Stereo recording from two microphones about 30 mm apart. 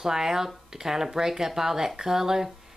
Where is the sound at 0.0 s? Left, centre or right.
Centre.